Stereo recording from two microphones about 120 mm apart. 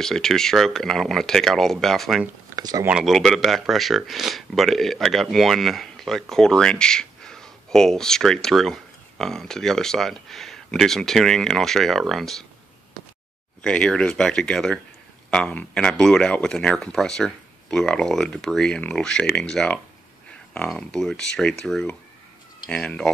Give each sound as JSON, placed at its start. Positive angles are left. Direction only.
{"t": 0.0, "sound": "speech", "side_deg": 5}
{"t": 2.5, "sound": "a sound", "side_deg": -35}
{"t": 2.9, "sound": "speech", "side_deg": 0}
{"t": 13.6, "sound": "speech", "side_deg": 10}